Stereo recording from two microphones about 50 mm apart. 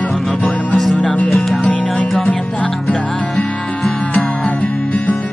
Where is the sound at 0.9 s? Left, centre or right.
Left.